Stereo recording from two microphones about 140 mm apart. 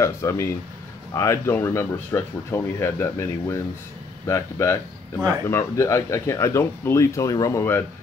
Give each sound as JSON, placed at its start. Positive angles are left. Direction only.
{"t": 0.0, "sound": "speech", "side_deg": 20}